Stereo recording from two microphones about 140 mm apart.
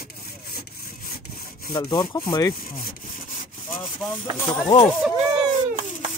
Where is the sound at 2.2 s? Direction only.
25° left (ahead or behind).